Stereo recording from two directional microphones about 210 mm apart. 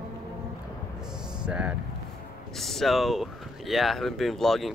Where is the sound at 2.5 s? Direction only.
Centre (ahead or behind).